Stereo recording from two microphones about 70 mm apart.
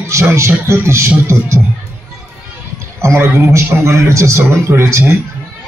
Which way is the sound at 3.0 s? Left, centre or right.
Right.